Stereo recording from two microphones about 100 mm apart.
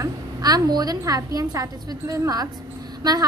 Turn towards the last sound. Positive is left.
turn(degrees=-40)  # may be behind; listen again after turning